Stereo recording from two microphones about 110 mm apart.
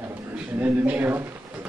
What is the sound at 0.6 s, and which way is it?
Speech, 15° right (ahead or behind).